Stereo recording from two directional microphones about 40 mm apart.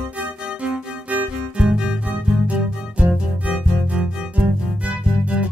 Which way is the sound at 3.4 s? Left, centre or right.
Right.